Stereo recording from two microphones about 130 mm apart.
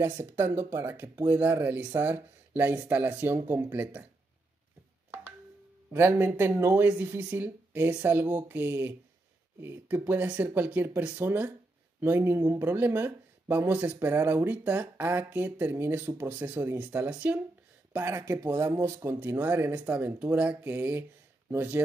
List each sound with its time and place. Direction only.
0.2 s speech: 20° right (ahead or behind)
5.9 s speech: 15° right (ahead or behind)